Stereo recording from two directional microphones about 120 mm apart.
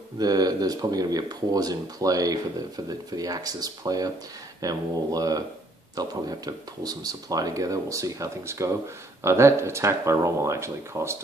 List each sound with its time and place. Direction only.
0.2 s speech: 30° right (ahead or behind)